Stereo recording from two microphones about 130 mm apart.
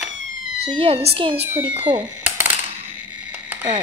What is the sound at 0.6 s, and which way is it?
Speech, 50° right (ahead or behind).